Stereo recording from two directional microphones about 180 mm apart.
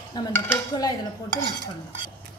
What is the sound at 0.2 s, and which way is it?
Dishes, 25° left (ahead or behind).